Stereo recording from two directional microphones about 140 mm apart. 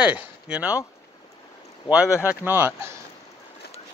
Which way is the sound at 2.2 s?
15° right (ahead or behind).